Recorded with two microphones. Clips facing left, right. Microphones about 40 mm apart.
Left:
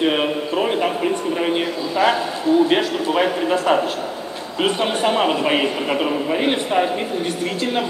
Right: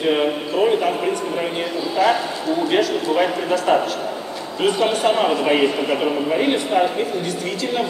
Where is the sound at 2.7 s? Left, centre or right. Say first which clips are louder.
Even; left.